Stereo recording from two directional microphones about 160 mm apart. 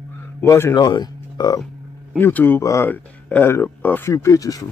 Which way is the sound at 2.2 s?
10° left (ahead or behind).